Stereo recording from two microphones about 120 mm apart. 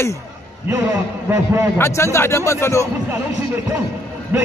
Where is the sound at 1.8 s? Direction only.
25° left (ahead or behind).